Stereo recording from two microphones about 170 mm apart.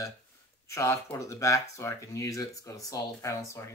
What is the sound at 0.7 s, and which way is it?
Speech, 15° left (ahead or behind).